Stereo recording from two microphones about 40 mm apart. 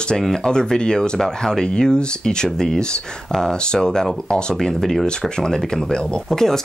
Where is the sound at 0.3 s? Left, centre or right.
Centre.